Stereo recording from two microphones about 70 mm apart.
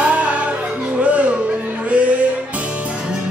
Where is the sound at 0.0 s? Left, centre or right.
Centre.